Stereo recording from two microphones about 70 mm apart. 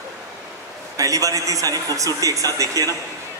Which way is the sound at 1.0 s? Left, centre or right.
Right.